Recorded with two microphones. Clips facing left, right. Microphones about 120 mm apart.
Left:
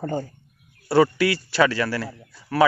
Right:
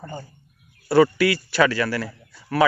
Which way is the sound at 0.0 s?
60° left (ahead or behind).